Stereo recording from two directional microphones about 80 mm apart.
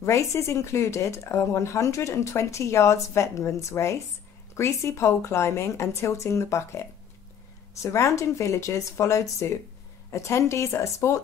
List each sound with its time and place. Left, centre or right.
0.0 s speech: left